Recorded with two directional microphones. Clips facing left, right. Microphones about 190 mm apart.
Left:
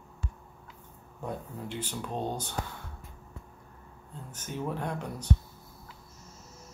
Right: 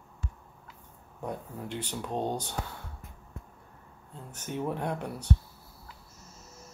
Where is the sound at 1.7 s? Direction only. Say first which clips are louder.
Right 1 dB; 10° left (ahead or behind).